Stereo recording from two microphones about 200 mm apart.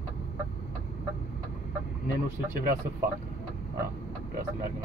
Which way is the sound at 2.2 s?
40° right (ahead or behind).